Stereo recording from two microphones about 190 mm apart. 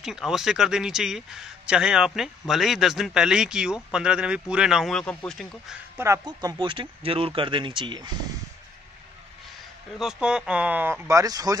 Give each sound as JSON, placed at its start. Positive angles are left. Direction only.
{"t": 0.0, "sound": "speech", "side_deg": 0}
{"t": 5.9, "sound": "speech", "side_deg": -15}
{"t": 9.9, "sound": "speech", "side_deg": -5}